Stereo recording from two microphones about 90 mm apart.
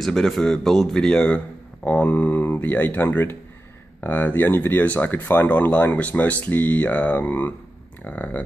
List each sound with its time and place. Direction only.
0.0 s speech: 5° left (ahead or behind)